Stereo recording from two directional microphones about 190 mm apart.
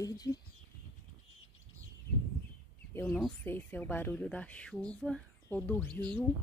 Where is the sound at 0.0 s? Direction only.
20° left (ahead or behind).